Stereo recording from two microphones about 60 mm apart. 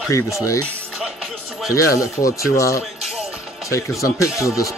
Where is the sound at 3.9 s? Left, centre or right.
Left.